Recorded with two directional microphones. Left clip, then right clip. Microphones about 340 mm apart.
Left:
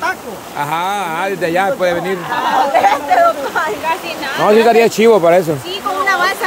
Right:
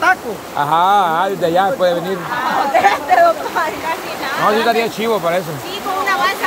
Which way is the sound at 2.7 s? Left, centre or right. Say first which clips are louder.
Right 2 dB; centre.